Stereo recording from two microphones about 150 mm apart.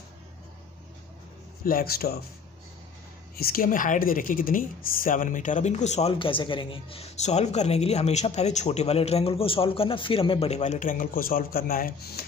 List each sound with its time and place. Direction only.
1.6 s speech: 75° left (ahead or behind); by 2.1 s 90° left
3.3 s speech: 80° left; by 6.1 s 50° left (ahead or behind)
6.1 s a woman's voice: 35° left (ahead or behind); by 12.3 s 90° left